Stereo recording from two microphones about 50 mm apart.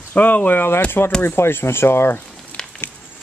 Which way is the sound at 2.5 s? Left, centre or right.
Left.